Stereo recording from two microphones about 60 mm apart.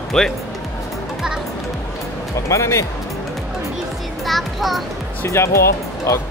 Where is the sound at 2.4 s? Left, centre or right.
Left.